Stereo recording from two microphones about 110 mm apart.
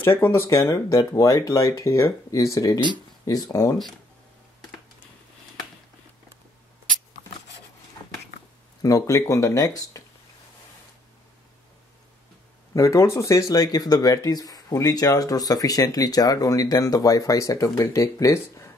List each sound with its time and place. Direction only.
0.0 s speech: 20° left (ahead or behind)
0.6 s speech: 30° left (ahead or behind)
8.8 s speech: 30° left (ahead or behind)
12.7 s speech: 25° left (ahead or behind)